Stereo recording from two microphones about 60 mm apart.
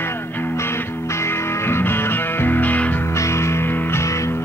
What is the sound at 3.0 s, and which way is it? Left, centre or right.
Music, left.